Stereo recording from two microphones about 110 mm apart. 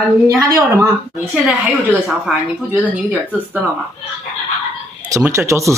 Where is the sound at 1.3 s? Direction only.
10° right (ahead or behind).